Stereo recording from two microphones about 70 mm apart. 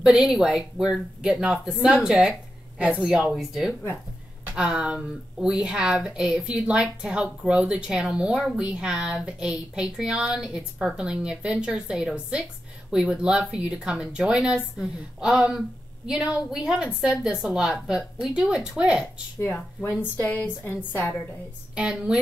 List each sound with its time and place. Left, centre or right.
0.0 s a woman's voice: centre
19.5 s a woman's voice: left
21.7 s speech: centre